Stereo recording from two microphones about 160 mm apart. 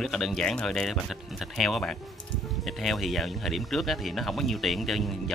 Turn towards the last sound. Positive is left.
turn(degrees=0)  # may be behind; listen again after turning